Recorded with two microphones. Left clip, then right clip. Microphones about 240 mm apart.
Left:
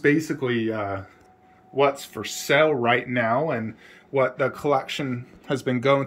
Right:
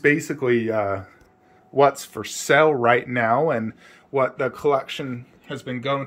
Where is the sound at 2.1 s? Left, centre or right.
Centre.